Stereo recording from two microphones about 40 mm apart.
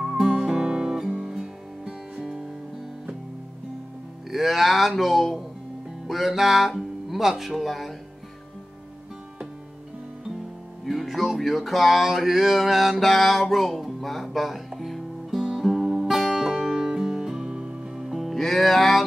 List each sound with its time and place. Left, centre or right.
0.0 s music: centre
0.3 s music: centre
4.3 s speech: centre
10.9 s speech: centre
13.0 s music: centre
16.9 s music: centre
18.0 s music: centre